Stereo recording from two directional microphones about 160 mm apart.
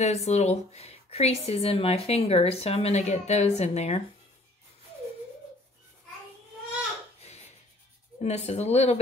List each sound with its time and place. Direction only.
0.0 s a woman's voice: 45° left (ahead or behind)
8.2 s speech: 45° left (ahead or behind)